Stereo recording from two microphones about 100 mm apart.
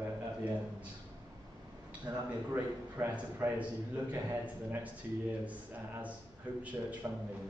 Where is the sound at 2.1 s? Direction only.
40° right (ahead or behind).